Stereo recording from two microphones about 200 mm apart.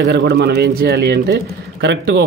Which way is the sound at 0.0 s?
55° right (ahead or behind).